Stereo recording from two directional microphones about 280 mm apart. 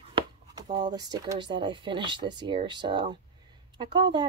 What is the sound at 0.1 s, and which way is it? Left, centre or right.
Speech, centre.